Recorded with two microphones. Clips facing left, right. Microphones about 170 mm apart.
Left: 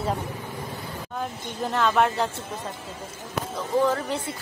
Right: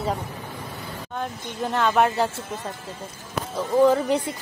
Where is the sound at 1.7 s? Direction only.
Centre (ahead or behind).